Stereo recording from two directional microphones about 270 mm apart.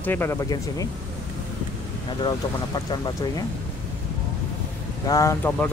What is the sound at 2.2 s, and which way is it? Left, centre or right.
Speech, centre.